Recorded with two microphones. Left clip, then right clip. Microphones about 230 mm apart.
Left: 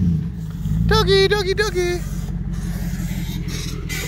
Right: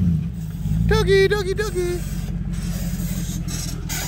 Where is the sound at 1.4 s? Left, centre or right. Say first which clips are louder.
Left 4 dB; centre.